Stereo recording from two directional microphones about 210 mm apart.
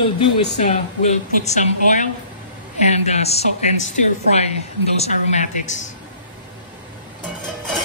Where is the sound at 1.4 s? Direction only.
35° left (ahead or behind).